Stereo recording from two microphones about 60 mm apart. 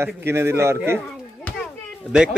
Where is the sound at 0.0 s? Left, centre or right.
Right.